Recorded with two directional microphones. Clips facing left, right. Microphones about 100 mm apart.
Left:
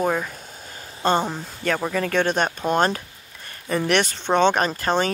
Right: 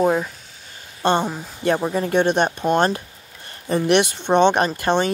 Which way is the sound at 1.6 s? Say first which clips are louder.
Right 3 dB; 20° right (ahead or behind).